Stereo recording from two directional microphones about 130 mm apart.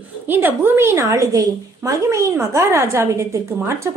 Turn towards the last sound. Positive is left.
turn(degrees=-20)  # may be behind; listen again after turning